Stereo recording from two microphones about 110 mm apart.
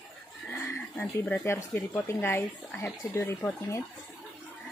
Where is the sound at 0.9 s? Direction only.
15° left (ahead or behind).